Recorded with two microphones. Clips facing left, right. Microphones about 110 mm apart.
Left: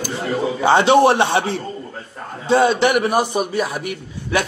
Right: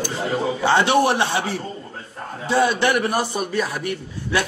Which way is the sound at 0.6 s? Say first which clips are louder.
Left 5 dB; 20° left (ahead or behind).